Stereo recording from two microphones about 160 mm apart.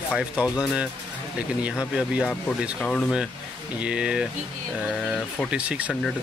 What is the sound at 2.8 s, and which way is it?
Speech, 5° left (ahead or behind).